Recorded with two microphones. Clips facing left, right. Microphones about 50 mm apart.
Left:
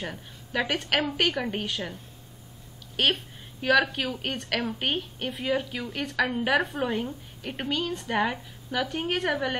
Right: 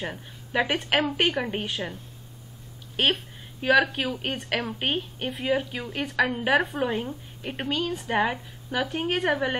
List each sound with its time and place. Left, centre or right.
0.0 s a woman's voice: centre
3.0 s a woman's voice: centre